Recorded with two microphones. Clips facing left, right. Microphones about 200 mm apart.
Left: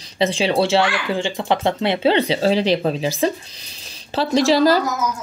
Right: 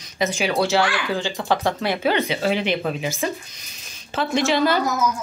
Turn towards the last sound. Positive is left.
turn(degrees=35)  # may be behind; listen again after turning